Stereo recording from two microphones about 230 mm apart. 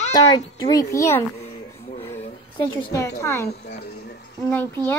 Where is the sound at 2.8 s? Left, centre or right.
Centre.